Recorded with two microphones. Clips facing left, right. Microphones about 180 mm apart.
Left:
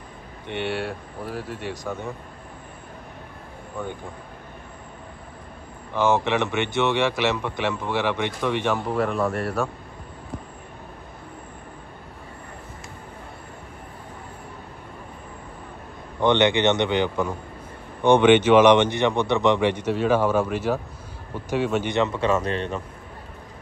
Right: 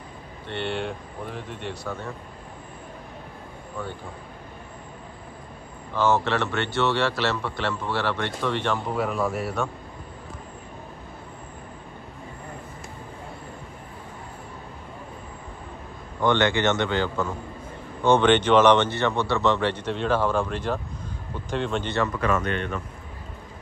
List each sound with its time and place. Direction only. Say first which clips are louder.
0.5 s a man's voice: left 1 dB; 10° left (ahead or behind)
5.9 s a man's voice: left 2 dB; 15° left (ahead or behind)
8.9 s a man's voice: left 2 dB; 5° right (ahead or behind)
16.2 s a man's voice: left 3 dB; 20° left (ahead or behind)
21.9 s a man's voice: left 1 dB; 25° left (ahead or behind)